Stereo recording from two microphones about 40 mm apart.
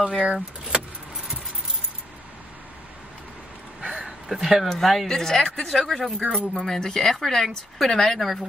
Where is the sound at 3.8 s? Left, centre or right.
Right.